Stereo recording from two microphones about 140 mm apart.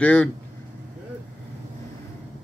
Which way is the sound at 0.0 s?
10° left (ahead or behind).